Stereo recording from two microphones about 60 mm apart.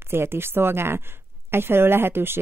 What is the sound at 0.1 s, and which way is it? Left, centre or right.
Speech, right.